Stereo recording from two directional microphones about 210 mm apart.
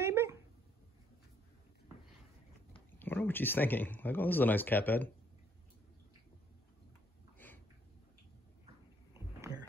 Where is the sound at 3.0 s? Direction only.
10° left (ahead or behind).